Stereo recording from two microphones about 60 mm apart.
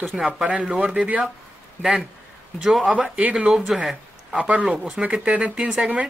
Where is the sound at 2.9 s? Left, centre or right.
Centre.